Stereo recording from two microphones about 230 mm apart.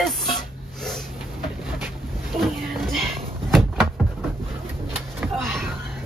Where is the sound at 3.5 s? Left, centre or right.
Centre.